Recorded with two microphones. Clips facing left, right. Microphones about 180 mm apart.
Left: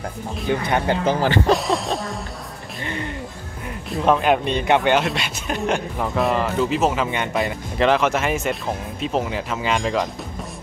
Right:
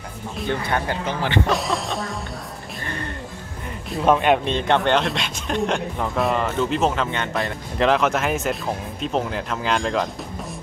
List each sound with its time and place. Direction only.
0.7 s speech: 20° left (ahead or behind)
1.0 s speech: 40° left (ahead or behind)
1.5 s speech: centre (ahead or behind)
2.8 s music: 15° left (ahead or behind)
3.9 s speech: centre (ahead or behind)